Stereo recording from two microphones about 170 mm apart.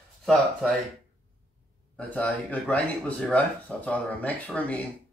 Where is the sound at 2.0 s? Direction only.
10° left (ahead or behind).